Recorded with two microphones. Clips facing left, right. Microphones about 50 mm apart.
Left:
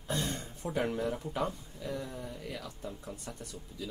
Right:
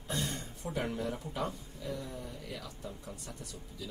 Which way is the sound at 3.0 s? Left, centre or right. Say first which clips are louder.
Left 2 dB; left.